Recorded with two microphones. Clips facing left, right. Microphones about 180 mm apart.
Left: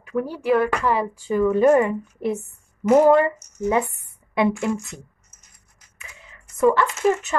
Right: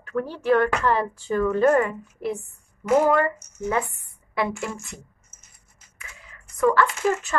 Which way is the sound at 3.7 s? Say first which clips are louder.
Left 4 dB; 20° left (ahead or behind).